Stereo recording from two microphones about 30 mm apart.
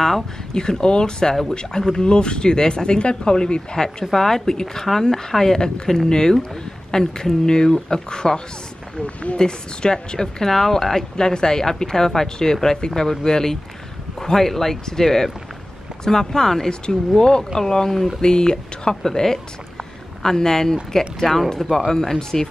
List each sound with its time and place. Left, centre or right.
0.6 s speech: left
4.0 s speech: centre
5.3 s speech: centre
9.0 s speech: left
9.4 s speech: left
10.5 s speech: centre
18.2 s speech: left